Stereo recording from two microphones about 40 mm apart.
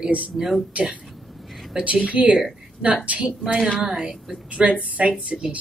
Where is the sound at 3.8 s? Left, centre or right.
Centre.